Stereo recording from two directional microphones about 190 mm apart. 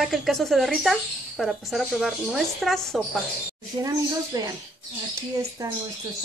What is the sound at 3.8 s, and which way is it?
Speech, 20° right (ahead or behind).